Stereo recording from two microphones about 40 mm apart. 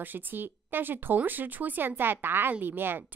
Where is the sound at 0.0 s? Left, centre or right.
Right.